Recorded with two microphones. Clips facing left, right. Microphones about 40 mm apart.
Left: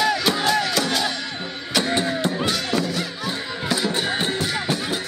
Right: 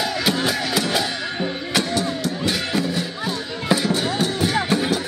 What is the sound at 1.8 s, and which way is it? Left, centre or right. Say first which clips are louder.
Music: left 1 dB; left.